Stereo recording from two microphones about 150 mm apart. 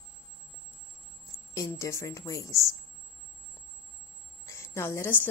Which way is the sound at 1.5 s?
20° left (ahead or behind).